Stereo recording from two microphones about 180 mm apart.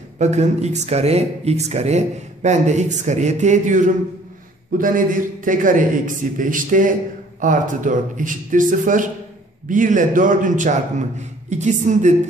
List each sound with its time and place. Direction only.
0.2 s a man's voice: 40° right (ahead or behind)